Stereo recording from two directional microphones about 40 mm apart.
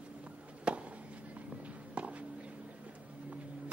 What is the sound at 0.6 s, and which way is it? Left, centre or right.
Chop, right.